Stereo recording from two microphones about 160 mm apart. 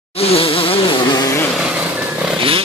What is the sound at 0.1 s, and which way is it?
Insect, 40° left (ahead or behind).